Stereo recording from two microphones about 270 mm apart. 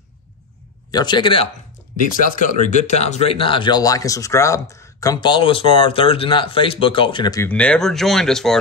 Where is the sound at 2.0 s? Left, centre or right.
Left.